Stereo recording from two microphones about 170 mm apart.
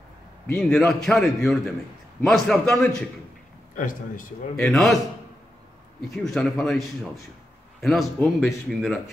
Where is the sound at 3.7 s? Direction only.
50° left (ahead or behind).